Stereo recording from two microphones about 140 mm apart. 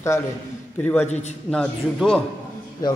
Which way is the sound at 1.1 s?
55° left (ahead or behind).